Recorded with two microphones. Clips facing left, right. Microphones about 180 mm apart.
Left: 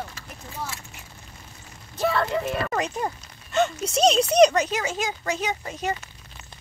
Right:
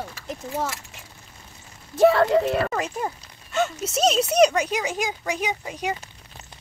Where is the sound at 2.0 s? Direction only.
75° right (ahead or behind).